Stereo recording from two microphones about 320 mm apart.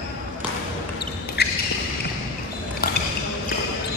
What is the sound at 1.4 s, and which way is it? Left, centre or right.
Basketball bounce, left.